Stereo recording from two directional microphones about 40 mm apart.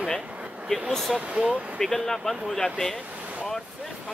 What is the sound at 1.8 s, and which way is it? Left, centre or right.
Speech, centre.